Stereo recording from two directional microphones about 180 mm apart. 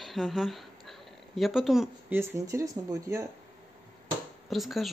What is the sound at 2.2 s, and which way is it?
Speech, 15° right (ahead or behind).